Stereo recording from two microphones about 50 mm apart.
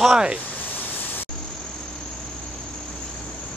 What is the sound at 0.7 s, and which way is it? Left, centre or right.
Vehicle, left.